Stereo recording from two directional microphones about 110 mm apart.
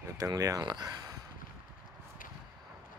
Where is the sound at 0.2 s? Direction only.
35° right (ahead or behind).